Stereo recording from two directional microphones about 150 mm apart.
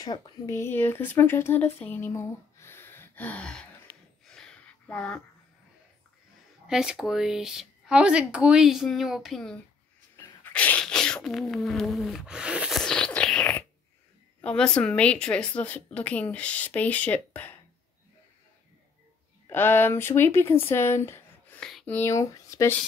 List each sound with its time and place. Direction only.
0.0 s speech: 20° left (ahead or behind); by 3.6 s 5° left (ahead or behind)
4.3 s a sound: 5° left (ahead or behind)
6.7 s speech: 5° right (ahead or behind)
10.1 s sneeze: 10° left (ahead or behind)
14.4 s speech: 5° left (ahead or behind)
19.5 s speech: 15° left (ahead or behind)